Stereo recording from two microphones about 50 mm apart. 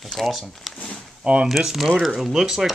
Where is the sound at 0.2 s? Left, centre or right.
Centre.